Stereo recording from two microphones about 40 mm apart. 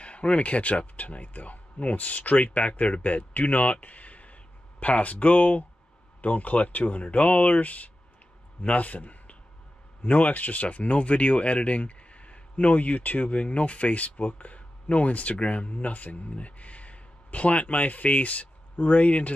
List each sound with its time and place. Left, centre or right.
0.0 s a man's voice: left